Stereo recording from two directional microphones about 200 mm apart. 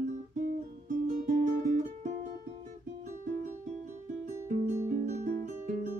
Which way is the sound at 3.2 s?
40° right (ahead or behind).